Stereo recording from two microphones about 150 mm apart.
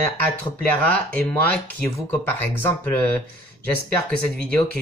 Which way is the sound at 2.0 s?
15° left (ahead or behind).